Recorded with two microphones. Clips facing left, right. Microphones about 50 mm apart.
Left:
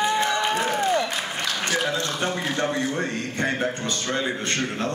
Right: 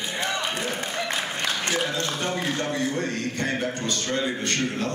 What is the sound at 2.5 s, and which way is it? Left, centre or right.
A man's voice, centre.